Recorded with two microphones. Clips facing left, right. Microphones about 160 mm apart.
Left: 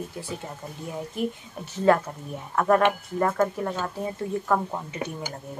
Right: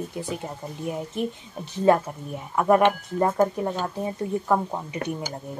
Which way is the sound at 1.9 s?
20° right (ahead or behind).